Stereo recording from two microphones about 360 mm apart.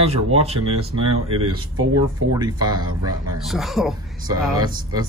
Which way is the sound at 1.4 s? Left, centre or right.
Right.